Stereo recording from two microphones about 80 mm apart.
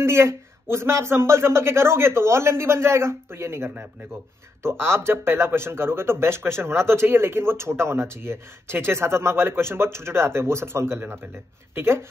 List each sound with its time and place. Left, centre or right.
0.0 s speech: right